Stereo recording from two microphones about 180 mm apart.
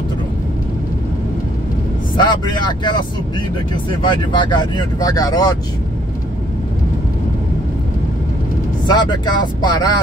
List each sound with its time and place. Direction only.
2.1 s speech: 25° left (ahead or behind)
8.8 s speech: 25° left (ahead or behind)